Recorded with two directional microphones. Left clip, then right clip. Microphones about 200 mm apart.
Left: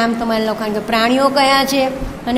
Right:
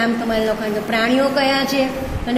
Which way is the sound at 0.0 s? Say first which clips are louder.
Left 2 dB; 55° left (ahead or behind).